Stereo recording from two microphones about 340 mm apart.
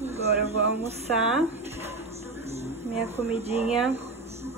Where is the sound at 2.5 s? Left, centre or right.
Centre.